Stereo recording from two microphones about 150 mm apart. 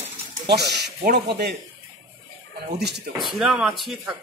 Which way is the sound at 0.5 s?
90° right.